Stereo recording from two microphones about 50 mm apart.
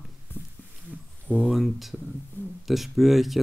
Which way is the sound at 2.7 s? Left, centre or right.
Centre.